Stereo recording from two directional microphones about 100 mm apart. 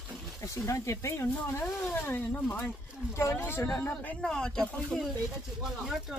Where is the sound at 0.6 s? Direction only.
30° left (ahead or behind); by 4.3 s 15° left (ahead or behind).